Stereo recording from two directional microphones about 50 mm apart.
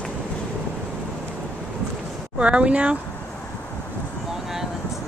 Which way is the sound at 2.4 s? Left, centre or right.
Right.